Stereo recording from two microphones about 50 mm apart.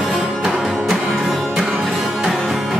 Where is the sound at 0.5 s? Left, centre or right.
Centre.